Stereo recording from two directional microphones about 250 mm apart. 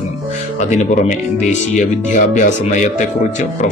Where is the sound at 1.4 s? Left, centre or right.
Left.